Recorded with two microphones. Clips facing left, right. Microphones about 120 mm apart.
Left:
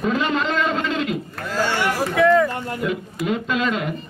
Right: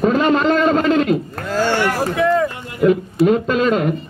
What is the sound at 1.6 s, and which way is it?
Speech, 65° right (ahead or behind).